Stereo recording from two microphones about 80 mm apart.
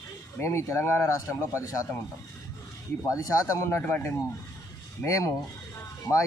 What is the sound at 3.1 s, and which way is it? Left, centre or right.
Speech, left.